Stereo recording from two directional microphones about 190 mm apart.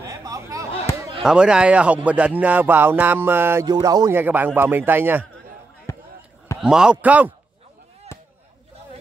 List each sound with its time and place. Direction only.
0.0 s a sound: 15° right (ahead or behind)
1.2 s a man's voice: 5° right (ahead or behind)
2.0 s music: 5° right (ahead or behind)
5.9 s basketball bounce: 15° left (ahead or behind)
6.6 s music: 5° right (ahead or behind)
8.1 s chop: 15° left (ahead or behind)